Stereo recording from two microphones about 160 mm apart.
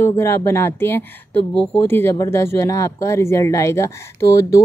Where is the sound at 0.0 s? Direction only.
15° left (ahead or behind).